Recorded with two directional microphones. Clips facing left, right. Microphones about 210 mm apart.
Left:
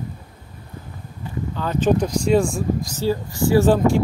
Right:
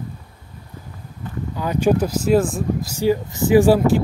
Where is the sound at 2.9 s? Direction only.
15° right (ahead or behind).